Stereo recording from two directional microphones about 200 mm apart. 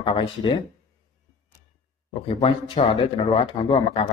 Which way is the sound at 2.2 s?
30° left (ahead or behind).